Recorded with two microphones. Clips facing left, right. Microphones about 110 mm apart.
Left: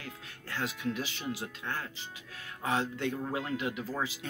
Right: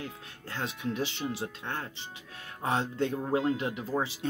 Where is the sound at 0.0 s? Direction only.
25° right (ahead or behind).